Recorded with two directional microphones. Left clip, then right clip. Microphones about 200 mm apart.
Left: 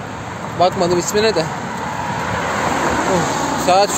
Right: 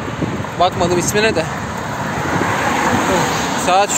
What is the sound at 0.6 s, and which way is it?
Speech, 10° left (ahead or behind).